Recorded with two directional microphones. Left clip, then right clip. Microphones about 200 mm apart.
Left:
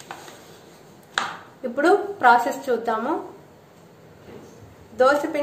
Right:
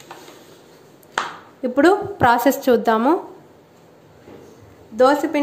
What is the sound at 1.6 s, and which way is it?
A woman's voice, 45° right (ahead or behind).